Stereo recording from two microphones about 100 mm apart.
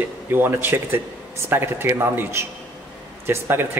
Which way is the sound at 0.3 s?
20° right (ahead or behind).